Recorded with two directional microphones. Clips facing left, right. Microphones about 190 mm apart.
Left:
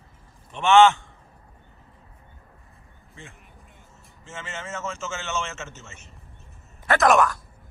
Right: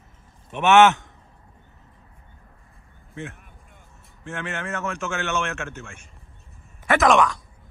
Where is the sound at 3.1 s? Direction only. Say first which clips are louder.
Right 11 dB; 65° right (ahead or behind).